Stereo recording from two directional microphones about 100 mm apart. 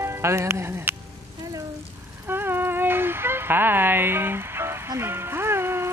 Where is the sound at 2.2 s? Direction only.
20° right (ahead or behind).